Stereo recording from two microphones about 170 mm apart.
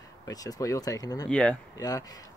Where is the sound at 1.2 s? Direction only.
5° left (ahead or behind).